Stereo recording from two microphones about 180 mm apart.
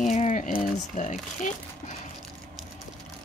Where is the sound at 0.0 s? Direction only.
40° left (ahead or behind).